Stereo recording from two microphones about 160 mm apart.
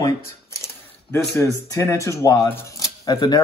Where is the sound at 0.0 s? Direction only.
20° left (ahead or behind).